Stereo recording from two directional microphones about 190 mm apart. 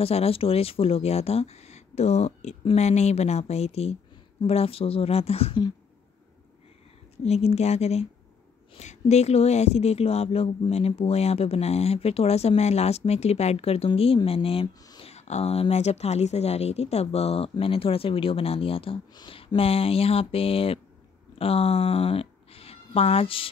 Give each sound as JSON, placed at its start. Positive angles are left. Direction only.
{"t": 0.0, "sound": "a woman's voice", "side_deg": 30}
{"t": 7.2, "sound": "a woman's voice", "side_deg": 35}
{"t": 15.0, "sound": "a woman's voice", "side_deg": 35}